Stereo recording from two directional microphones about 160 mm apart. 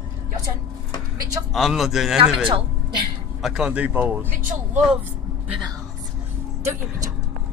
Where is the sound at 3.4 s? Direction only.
5° right (ahead or behind).